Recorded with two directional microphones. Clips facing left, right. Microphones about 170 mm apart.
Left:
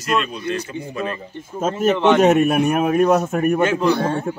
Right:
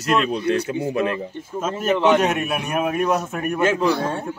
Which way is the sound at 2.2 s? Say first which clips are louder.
Left 8 dB; 45° left (ahead or behind).